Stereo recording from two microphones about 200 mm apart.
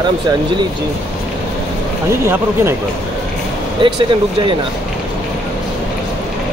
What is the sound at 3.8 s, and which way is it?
Speech, 25° right (ahead or behind).